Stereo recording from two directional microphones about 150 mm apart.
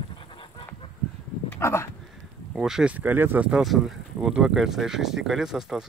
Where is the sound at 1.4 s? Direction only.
15° left (ahead or behind).